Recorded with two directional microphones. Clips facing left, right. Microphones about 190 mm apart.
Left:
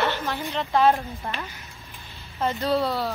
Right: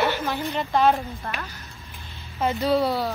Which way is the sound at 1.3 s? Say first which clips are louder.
Left 1 dB; 15° left (ahead or behind).